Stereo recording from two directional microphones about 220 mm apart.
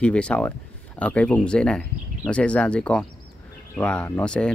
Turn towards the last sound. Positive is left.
turn(degrees=5)  # may be behind; listen again after turning